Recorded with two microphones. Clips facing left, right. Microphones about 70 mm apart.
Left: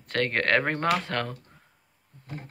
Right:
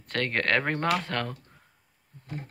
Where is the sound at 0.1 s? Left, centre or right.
Centre.